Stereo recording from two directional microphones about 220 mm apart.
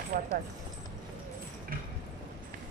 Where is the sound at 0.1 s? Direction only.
40° right (ahead or behind).